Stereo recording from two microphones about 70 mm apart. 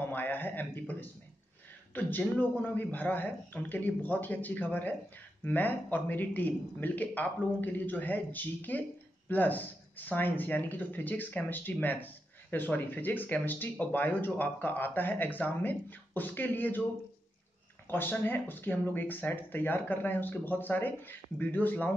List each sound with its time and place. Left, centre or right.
0.0 s a sound: left
2.0 s speech: left
17.8 s speech: left